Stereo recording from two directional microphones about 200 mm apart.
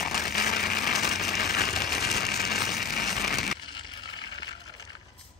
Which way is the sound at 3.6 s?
25° left (ahead or behind).